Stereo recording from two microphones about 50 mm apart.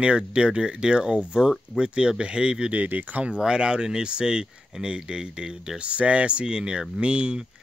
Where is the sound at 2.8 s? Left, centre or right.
Right.